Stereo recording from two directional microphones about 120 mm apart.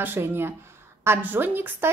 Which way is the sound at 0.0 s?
15° right (ahead or behind).